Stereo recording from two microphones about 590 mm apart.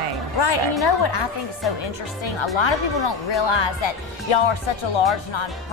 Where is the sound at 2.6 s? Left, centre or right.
Left.